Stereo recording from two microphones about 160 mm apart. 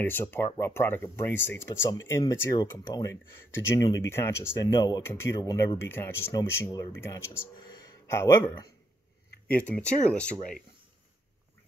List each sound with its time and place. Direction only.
0.0 s speech: 15° left (ahead or behind)
5.9 s speech: 15° left (ahead or behind)
9.7 s speech: 10° left (ahead or behind)